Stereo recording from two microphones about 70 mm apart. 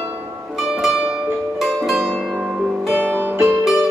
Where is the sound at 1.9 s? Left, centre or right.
Centre.